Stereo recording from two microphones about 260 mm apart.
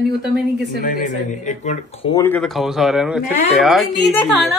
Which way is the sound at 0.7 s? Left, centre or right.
Left.